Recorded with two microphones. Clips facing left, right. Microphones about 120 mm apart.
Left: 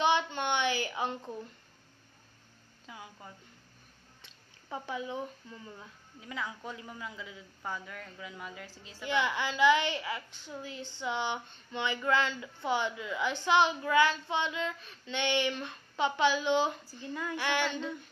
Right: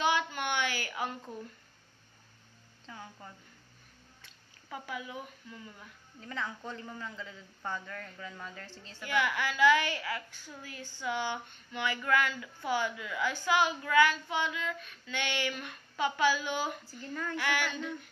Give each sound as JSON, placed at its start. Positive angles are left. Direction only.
{"t": 0.0, "sound": "a sound", "side_deg": 20}
{"t": 2.9, "sound": "speech", "side_deg": 10}
{"t": 4.2, "sound": "speech", "side_deg": 25}
{"t": 6.2, "sound": "speech", "side_deg": 10}
{"t": 9.0, "sound": "a woman's voice", "side_deg": 20}
{"t": 17.1, "sound": "speech", "side_deg": 10}
{"t": 17.4, "sound": "a woman's voice", "side_deg": 20}